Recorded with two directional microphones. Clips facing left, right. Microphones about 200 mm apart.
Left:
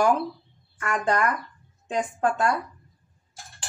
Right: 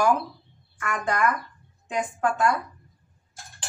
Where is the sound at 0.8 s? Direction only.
30° left (ahead or behind).